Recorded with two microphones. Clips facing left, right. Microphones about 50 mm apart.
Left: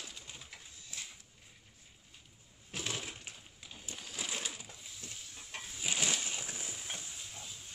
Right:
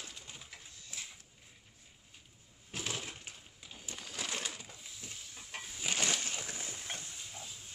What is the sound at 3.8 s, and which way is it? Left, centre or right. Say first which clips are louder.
Crushing: right 1 dB; right.